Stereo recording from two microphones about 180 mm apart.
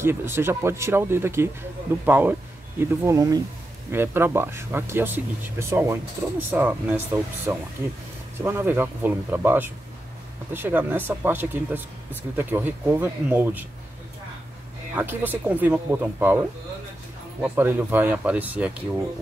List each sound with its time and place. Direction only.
0.0 s speech: 15° right (ahead or behind)
15.0 s speech: 10° right (ahead or behind)
17.4 s speech: 10° right (ahead or behind)